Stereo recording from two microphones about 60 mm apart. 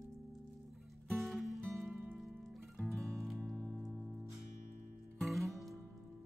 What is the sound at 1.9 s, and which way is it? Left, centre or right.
Music, right.